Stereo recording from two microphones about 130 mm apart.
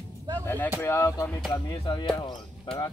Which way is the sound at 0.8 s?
20° left (ahead or behind).